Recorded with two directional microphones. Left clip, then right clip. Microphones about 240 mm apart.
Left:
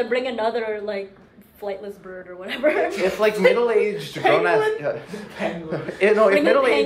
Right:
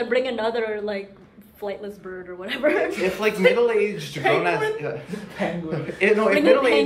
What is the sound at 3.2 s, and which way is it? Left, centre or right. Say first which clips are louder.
Speech: left 1 dB; centre.